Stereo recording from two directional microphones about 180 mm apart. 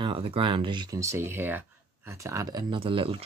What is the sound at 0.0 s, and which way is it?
Speech, 30° right (ahead or behind).